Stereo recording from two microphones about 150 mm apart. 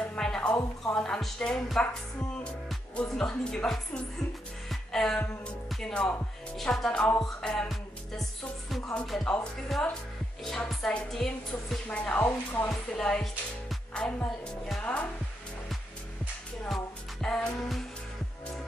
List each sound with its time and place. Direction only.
0.0 s music: 5° left (ahead or behind)
0.6 s speech: 15° left (ahead or behind)
1.0 s speech: 5° left (ahead or behind)
4.6 s music: 5° left (ahead or behind)
5.7 s speech: 5° left (ahead or behind)
8.9 s speech: 5° left (ahead or behind)
16.6 s speech: 5° left (ahead or behind)